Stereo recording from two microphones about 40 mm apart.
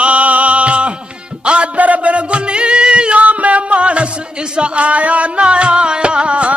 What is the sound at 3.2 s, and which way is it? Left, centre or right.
Music, right.